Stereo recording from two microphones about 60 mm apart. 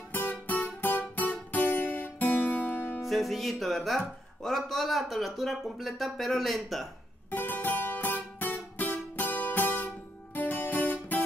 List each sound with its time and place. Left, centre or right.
0.1 s music: left
3.1 s speech: centre
7.2 s music: left
10.3 s guitar: left